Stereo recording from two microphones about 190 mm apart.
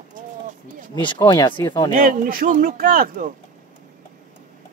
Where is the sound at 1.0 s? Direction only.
25° left (ahead or behind).